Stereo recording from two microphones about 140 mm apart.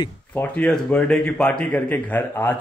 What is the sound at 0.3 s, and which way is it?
Speech, 10° left (ahead or behind).